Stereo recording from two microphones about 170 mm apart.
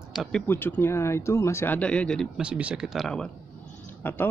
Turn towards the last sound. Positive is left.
turn(degrees=10)  # may be behind; listen again after turning